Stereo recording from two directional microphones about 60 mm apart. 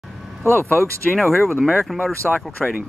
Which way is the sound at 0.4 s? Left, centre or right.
Left.